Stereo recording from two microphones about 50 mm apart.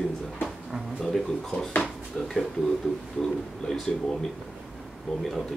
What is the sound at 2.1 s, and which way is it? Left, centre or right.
Speech, left.